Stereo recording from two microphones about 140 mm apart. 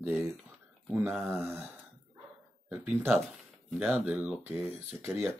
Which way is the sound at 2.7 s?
10° right (ahead or behind).